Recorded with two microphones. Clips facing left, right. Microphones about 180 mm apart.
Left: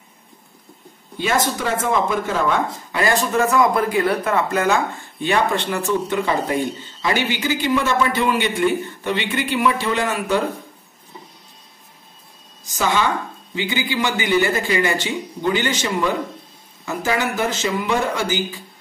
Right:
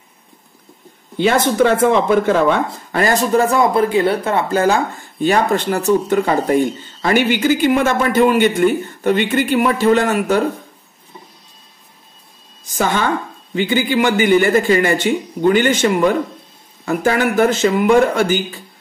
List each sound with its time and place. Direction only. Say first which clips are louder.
1.1 s speech: right 6 dB; 65° right (ahead or behind)
2.9 s speech: right 5 dB; 45° right (ahead or behind)
12.7 s speech: right 2 dB; 55° right (ahead or behind)